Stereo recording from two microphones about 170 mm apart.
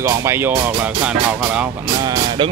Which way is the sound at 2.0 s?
25° right (ahead or behind).